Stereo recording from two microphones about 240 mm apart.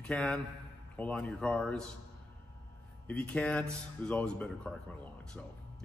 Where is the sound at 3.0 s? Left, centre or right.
Centre.